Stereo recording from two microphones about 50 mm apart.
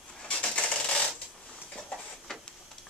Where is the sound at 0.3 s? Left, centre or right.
Left.